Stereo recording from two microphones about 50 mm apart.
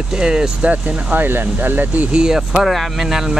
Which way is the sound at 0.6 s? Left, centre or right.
Right.